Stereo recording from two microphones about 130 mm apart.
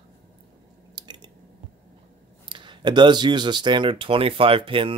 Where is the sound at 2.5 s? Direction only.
35° right (ahead or behind).